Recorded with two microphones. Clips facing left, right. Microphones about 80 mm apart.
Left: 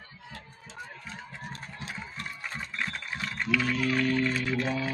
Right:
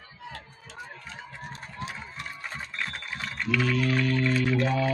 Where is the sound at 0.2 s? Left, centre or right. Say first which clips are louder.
Right 6 dB; right.